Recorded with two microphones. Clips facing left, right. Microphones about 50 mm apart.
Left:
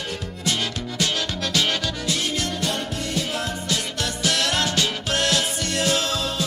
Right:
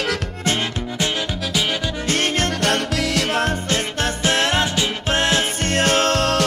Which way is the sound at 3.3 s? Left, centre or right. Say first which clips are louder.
Right 6 dB; right.